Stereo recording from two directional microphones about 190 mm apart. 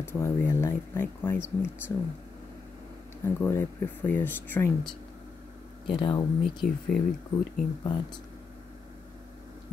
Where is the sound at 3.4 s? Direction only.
10° left (ahead or behind).